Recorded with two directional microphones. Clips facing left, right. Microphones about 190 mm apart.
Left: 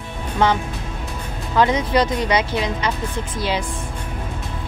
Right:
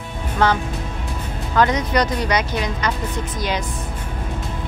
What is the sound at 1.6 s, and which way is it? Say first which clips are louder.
Speech: left 1 dB; 25° left (ahead or behind).